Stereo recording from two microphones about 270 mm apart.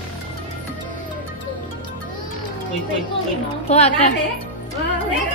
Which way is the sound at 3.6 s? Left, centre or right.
Left.